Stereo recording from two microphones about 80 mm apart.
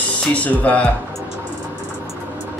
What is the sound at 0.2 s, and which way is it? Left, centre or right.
Speech, centre.